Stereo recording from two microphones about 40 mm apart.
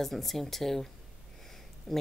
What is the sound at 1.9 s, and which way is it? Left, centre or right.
Speech, centre.